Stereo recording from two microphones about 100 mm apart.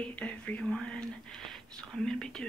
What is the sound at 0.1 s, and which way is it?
Speech, 15° left (ahead or behind).